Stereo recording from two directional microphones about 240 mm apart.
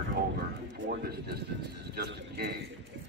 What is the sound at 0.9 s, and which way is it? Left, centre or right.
Clip-clop, right.